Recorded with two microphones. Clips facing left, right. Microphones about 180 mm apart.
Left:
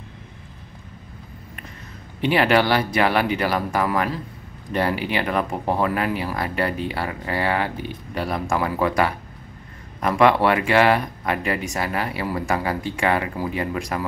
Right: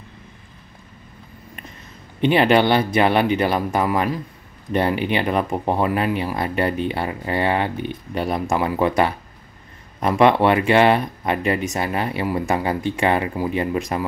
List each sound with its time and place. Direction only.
2.2 s speech: 20° right (ahead or behind)